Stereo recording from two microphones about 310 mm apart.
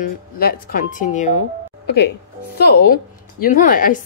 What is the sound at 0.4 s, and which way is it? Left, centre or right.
A woman's voice, left.